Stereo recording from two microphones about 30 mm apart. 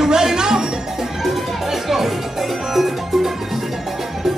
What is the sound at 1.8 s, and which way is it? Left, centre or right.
Music, centre.